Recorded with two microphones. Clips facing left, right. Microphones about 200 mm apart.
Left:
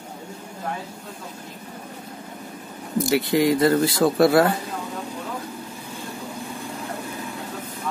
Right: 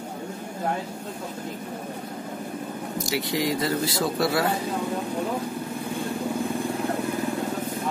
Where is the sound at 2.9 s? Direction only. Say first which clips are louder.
Left 8 dB; 55° left (ahead or behind).